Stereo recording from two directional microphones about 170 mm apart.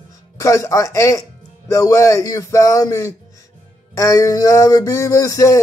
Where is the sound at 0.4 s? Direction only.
20° left (ahead or behind).